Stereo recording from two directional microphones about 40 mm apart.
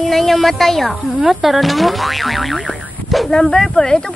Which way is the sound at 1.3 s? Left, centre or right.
Centre.